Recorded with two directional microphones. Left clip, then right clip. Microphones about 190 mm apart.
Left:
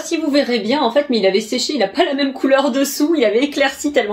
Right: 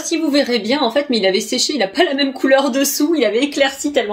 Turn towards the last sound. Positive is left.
turn(degrees=-10)  # may be behind; listen again after turning